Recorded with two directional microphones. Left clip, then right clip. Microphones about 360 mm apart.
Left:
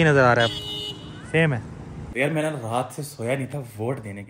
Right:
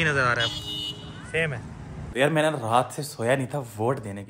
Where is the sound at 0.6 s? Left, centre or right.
Centre.